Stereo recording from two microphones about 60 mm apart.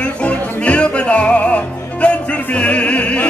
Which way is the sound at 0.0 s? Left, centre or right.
Left.